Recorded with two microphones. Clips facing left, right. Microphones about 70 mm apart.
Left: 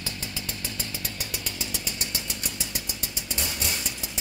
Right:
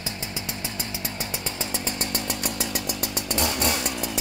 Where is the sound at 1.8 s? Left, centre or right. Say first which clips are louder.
Right 6 dB; right.